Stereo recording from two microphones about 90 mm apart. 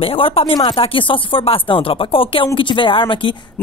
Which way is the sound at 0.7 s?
70° left (ahead or behind).